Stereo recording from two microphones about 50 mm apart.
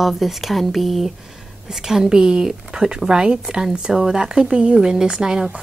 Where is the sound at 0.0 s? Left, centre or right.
Centre.